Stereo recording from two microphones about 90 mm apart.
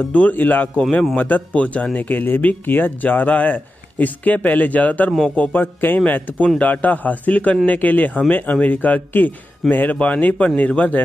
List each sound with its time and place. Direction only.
0.1 s a man's voice: 20° left (ahead or behind)